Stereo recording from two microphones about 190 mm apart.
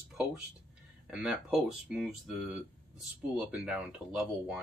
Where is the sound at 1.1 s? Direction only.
5° right (ahead or behind).